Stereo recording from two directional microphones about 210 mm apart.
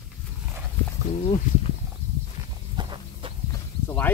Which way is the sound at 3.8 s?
10° left (ahead or behind).